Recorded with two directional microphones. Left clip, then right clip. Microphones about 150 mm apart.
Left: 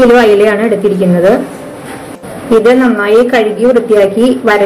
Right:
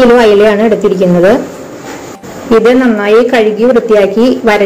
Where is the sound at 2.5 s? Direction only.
20° right (ahead or behind).